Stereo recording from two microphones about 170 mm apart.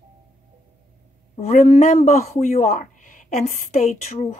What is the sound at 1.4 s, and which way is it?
A woman's voice, 40° left (ahead or behind).